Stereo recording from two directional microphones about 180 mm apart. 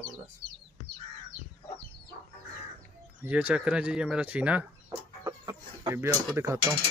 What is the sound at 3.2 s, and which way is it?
Speech, 10° right (ahead or behind).